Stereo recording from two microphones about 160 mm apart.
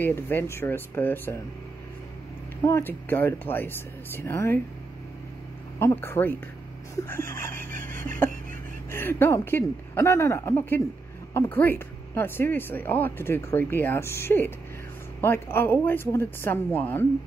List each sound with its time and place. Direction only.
0.0 s speech: 15° left (ahead or behind)
2.6 s speech: 15° left (ahead or behind)
5.8 s speech: 15° left (ahead or behind)
8.9 s speech: 15° left (ahead or behind)